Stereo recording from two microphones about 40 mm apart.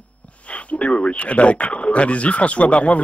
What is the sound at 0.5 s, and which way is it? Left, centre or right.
A man's voice, left.